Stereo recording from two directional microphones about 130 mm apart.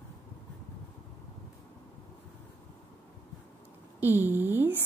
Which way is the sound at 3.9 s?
15° right (ahead or behind).